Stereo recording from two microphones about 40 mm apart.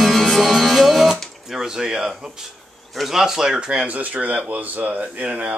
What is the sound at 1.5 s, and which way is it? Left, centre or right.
Speech, centre.